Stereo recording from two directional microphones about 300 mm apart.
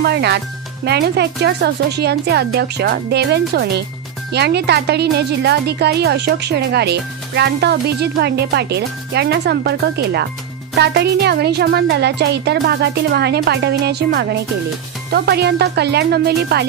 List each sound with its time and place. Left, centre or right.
0.0 s speech: right